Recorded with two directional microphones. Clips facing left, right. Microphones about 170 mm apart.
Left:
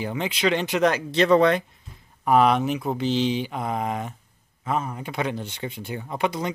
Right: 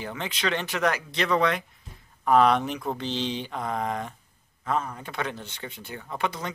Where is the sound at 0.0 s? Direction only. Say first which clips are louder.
Left 6 dB; 15° left (ahead or behind); by 1.6 s 30° left (ahead or behind).